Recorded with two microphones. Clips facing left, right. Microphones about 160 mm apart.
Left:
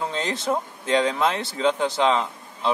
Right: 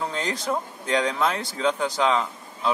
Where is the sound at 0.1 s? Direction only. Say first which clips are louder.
Left 2 dB; 25° left (ahead or behind).